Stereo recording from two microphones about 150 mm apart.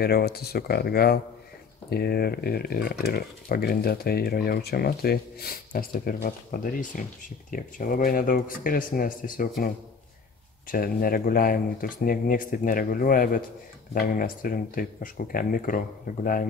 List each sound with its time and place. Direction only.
0.0 s speech: 90° left; by 9.7 s 70° left (ahead or behind)
10.7 s speech: 75° left (ahead or behind)